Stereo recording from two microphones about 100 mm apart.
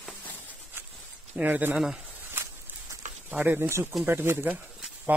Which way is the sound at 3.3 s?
15° right (ahead or behind).